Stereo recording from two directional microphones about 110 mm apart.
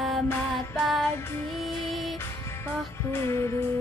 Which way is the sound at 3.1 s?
25° left (ahead or behind).